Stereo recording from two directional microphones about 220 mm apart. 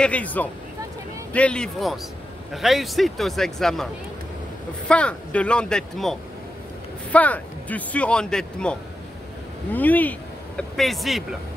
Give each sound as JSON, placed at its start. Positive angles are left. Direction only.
{"t": 0.0, "sound": "speech", "side_deg": 5}